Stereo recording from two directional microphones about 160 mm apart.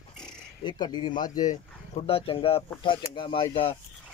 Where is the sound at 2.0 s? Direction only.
35° left (ahead or behind).